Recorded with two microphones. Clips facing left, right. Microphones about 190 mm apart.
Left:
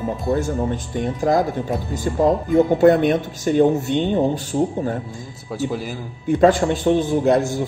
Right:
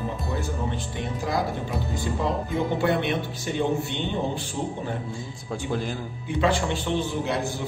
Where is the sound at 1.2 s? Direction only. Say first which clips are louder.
Left 9 dB; 45° left (ahead or behind).